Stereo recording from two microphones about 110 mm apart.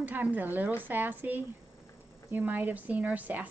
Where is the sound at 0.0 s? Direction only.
15° right (ahead or behind).